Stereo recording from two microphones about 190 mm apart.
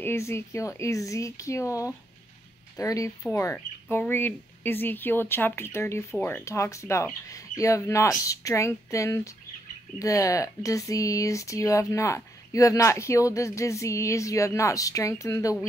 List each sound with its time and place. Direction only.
0.0 s speech: 15° left (ahead or behind)